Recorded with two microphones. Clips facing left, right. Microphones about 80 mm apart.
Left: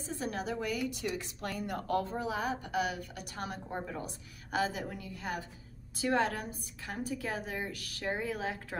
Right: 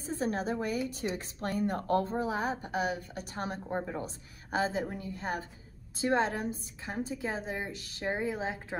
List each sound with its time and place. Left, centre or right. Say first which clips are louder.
0.0 s a woman's voice: right 4 dB; right